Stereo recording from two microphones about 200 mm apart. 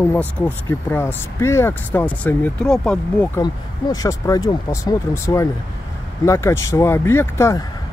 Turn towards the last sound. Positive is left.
turn(degrees=15)  # may be behind; listen again after turning